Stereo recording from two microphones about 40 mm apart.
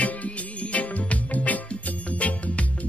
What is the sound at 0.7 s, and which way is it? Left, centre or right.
Music, left.